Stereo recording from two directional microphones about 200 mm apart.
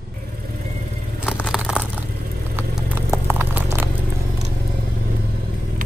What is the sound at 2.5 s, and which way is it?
Vehicle, 10° right (ahead or behind).